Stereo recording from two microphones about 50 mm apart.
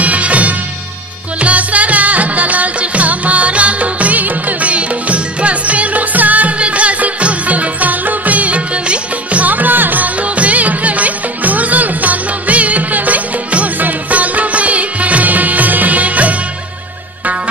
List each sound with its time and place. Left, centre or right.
0.0 s music: right